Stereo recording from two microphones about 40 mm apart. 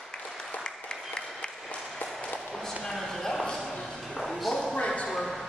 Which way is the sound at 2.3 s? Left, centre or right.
Centre.